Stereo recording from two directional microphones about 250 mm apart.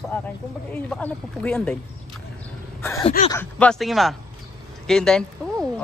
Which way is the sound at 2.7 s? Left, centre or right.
Centre.